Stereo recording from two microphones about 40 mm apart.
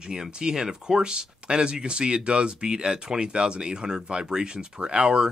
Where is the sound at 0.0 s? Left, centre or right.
Centre.